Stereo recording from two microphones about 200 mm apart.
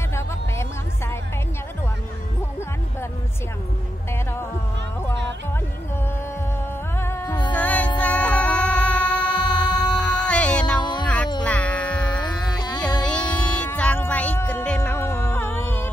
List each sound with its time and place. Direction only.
0.1 s music: 15° left (ahead or behind)
7.0 s music: 10° left (ahead or behind)
7.5 s music: 10° left (ahead or behind)
9.4 s a sound: 20° left (ahead or behind)
9.9 s music: 5° left (ahead or behind)
10.8 s a sound: 20° left (ahead or behind)
11.4 s music: 5° left (ahead or behind)
12.2 s a sound: 20° left (ahead or behind)
13.0 s music: 5° left (ahead or behind)